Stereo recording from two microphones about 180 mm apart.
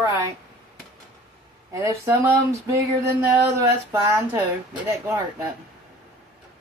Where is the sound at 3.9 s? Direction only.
15° right (ahead or behind).